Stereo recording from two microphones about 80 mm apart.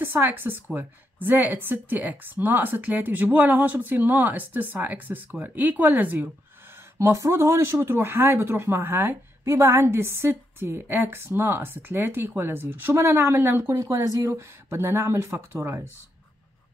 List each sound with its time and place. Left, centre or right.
0.0 s speech: right
7.0 s speech: right
13.7 s speech: right